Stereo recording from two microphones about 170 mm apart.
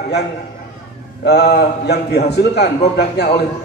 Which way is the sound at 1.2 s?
75° left (ahead or behind).